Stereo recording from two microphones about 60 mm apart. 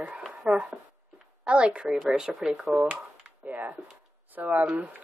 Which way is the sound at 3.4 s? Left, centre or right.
Right.